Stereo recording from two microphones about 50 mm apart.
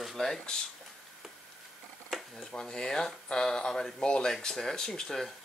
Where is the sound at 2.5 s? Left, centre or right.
Centre.